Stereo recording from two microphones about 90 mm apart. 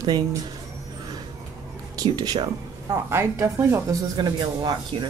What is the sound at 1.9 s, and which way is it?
Speech, 45° right (ahead or behind).